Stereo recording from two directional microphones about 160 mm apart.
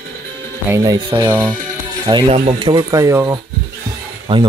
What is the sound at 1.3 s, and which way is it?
Speech, 10° right (ahead or behind).